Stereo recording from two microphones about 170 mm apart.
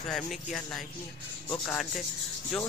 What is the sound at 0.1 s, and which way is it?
Speech, centre (ahead or behind).